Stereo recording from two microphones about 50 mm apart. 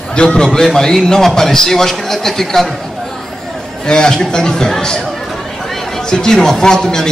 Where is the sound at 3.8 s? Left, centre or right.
Centre.